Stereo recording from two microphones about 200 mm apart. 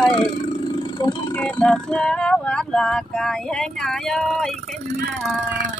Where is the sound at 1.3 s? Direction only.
5° left (ahead or behind).